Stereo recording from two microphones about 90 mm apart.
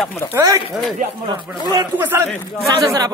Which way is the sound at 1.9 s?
20° right (ahead or behind).